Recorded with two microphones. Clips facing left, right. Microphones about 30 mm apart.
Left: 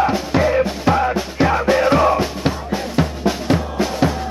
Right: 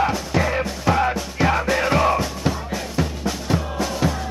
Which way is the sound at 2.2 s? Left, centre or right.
Left.